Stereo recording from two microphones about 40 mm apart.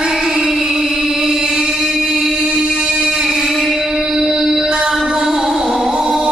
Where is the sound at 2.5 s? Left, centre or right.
Centre.